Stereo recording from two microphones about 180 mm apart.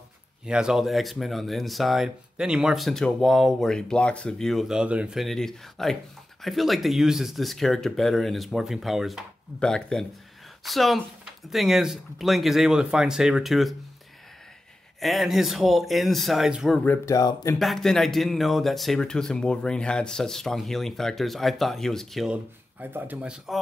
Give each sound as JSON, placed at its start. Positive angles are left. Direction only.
{"t": 0.5, "sound": "speech", "side_deg": -5}
{"t": 15.0, "sound": "speech", "side_deg": 0}
{"t": 16.8, "sound": "speech", "side_deg": 15}
{"t": 17.6, "sound": "speech", "side_deg": 0}